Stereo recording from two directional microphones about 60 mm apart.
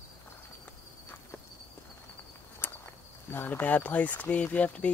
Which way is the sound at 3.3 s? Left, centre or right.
Left.